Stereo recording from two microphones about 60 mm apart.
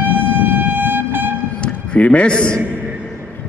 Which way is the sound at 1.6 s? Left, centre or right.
Centre.